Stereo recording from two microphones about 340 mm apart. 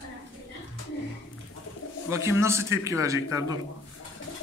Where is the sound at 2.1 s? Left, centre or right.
Centre.